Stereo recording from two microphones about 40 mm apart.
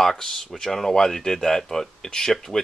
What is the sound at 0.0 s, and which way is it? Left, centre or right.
Speech, centre.